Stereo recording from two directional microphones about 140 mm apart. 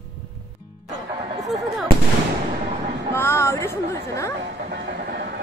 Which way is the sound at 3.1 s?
15° left (ahead or behind).